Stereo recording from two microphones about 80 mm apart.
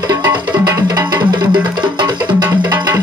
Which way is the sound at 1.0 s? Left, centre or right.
Right.